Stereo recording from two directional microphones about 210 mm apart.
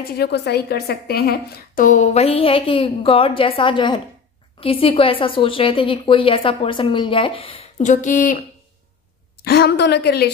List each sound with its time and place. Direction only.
0.0 s a woman's voice: 50° left (ahead or behind)
9.4 s a woman's voice: 50° left (ahead or behind)